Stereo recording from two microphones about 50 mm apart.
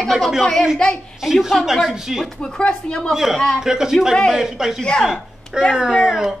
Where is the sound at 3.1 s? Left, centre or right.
Centre.